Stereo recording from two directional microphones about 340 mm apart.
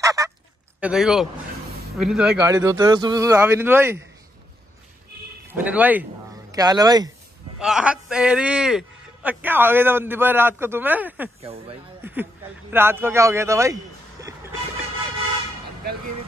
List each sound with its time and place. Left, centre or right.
0.0 s honk: centre
0.7 s speech: centre
5.5 s a man's voice: centre
11.4 s speech: centre
12.0 s speech: centre